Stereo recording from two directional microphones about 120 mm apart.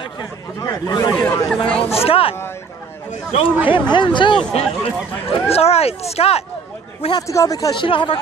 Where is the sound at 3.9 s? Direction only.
40° left (ahead or behind).